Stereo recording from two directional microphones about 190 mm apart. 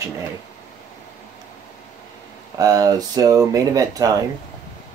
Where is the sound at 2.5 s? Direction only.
20° right (ahead or behind).